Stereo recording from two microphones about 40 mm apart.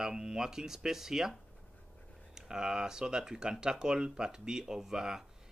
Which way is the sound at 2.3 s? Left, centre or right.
Centre.